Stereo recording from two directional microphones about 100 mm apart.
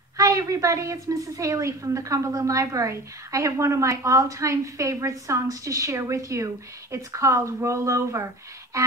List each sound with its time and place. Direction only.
0.2 s a woman's voice: 35° right (ahead or behind)